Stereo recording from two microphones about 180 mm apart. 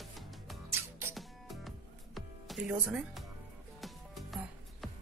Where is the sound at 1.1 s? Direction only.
Centre (ahead or behind).